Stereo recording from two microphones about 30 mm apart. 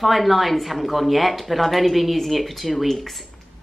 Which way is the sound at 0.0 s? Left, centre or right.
Centre.